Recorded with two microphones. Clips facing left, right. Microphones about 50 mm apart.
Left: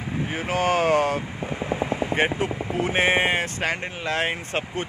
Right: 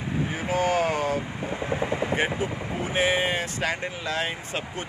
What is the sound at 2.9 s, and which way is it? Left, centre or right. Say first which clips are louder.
Speech: left 3 dB; left.